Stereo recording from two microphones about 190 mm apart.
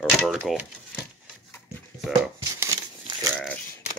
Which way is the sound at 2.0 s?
Centre (ahead or behind).